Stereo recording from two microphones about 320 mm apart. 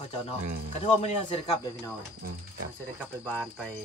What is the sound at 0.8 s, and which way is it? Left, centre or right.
Speech, centre.